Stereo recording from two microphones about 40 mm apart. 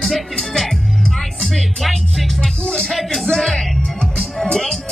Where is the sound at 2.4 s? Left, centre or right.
Centre.